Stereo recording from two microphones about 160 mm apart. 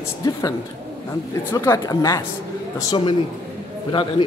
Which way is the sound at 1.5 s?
20° left (ahead or behind).